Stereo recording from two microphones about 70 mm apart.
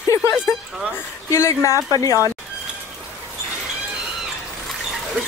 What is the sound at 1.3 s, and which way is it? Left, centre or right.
Speech, left.